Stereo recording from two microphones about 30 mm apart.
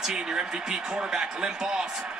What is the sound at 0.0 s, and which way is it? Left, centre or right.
Speech, centre.